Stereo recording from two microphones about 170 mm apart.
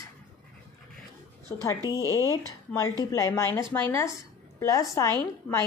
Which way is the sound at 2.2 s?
20° left (ahead or behind).